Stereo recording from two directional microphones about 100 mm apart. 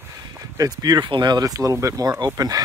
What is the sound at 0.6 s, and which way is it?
Speech, 40° right (ahead or behind).